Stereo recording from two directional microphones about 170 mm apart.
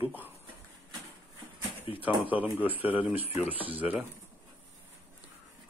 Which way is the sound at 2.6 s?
10° right (ahead or behind).